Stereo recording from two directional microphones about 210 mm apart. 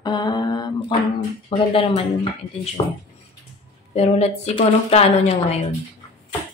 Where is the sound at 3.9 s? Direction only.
30° left (ahead or behind).